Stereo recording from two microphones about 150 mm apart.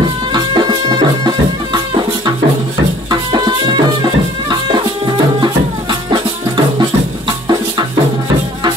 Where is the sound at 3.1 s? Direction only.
30° right (ahead or behind).